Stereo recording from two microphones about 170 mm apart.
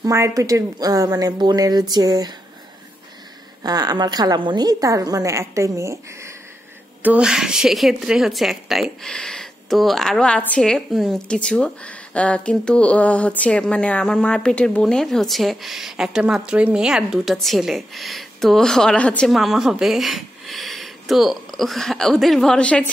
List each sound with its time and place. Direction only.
0.0 s a woman's voice: 20° right (ahead or behind)
3.6 s a woman's voice: 25° right (ahead or behind); by 22.8 s 5° left (ahead or behind)